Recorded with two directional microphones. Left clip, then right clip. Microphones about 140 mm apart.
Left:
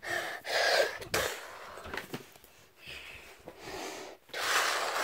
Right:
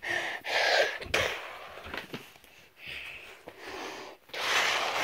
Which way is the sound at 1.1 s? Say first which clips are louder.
Right 4 dB; 10° right (ahead or behind).